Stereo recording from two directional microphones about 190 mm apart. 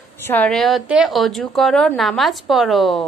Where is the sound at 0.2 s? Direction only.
10° left (ahead or behind).